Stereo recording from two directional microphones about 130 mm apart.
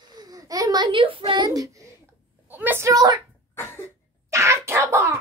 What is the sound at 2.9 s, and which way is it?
Speech, 30° right (ahead or behind).